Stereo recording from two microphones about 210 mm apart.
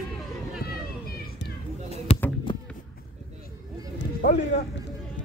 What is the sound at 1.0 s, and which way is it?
Children playing, 45° left (ahead or behind).